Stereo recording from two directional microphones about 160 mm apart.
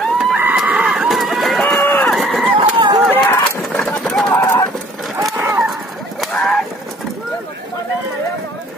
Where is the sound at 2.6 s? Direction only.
30° right (ahead or behind).